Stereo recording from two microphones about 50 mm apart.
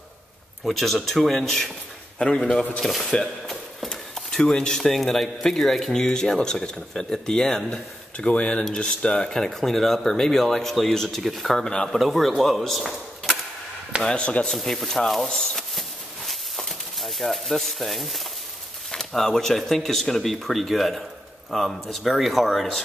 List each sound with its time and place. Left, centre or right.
0.7 s speech: centre
2.8 s speech: centre
3.9 s speech: centre
8.2 s speech: left; by 11.6 s centre
11.6 s speech: centre
11.9 s speech: centre
14.0 s speech: left
14.5 s speech: centre
16.3 s a sound: centre
18.9 s speech: centre